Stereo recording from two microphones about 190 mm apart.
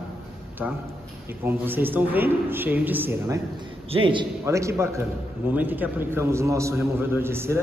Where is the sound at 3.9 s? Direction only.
25° right (ahead or behind).